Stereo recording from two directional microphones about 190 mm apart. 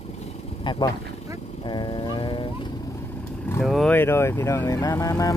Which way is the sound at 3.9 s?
10° left (ahead or behind).